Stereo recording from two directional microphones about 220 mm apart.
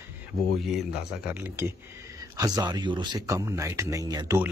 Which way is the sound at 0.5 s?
Centre (ahead or behind).